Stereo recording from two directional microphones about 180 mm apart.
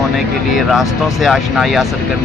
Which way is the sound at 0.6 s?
Centre (ahead or behind).